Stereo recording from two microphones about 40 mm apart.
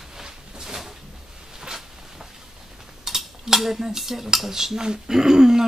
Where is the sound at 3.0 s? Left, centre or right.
Centre.